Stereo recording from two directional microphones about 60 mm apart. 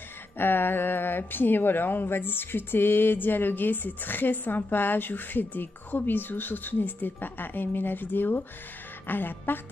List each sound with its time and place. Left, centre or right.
0.4 s speech: left